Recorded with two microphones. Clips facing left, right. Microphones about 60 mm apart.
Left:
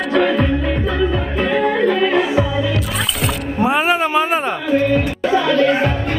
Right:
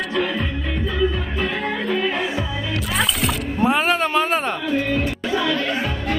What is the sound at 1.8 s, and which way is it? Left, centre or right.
Music, left.